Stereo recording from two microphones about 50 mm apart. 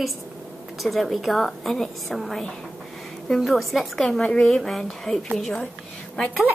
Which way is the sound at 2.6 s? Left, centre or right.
Centre.